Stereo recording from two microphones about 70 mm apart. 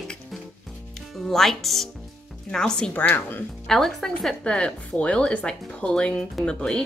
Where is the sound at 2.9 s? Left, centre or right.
Left.